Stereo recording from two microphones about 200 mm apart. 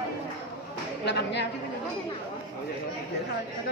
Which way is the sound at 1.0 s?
60° left (ahead or behind).